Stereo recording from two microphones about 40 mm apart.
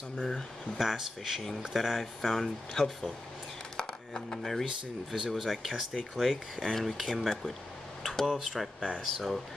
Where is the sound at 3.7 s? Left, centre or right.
Centre.